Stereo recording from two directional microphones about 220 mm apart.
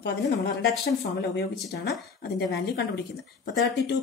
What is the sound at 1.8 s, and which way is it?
Speech, 45° left (ahead or behind).